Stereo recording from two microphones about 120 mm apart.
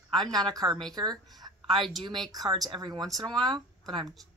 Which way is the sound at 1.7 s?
Centre (ahead or behind).